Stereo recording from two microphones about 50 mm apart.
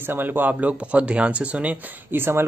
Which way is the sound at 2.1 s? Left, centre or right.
Right.